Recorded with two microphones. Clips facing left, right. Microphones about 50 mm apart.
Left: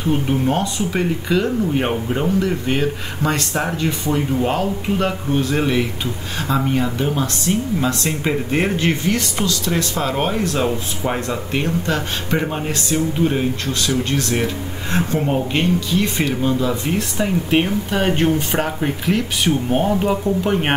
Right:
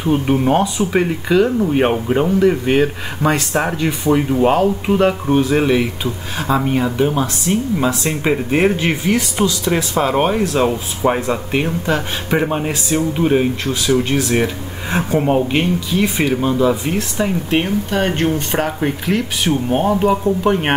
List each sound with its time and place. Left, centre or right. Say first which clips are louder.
0.5 s speech: right 5 dB; centre
16.9 s speech: right 1 dB; centre